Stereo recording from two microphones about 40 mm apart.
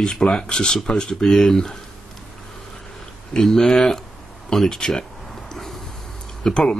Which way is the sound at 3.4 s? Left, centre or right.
Centre.